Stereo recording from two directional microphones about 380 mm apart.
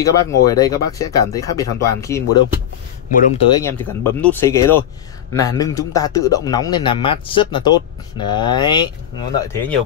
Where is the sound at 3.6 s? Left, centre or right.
Centre.